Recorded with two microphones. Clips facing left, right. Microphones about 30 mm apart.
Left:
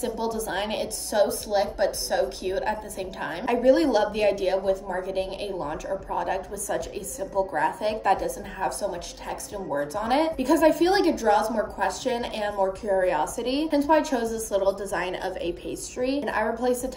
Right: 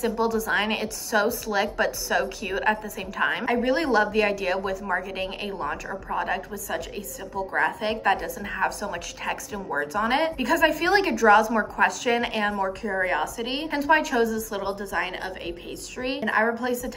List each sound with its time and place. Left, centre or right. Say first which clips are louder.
0.0 s a woman's voice: right 4 dB; right
3.4 s speech: left 8 dB; right
6.1 s a woman's voice: right 3 dB; right
13.1 s a woman's voice: left 1 dB; right
13.7 s speech: even; right
15.0 s a woman's voice: even; right
16.3 s speech: right 4 dB; right